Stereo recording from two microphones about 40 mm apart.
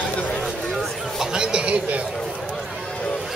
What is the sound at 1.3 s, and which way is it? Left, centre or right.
Speech, right.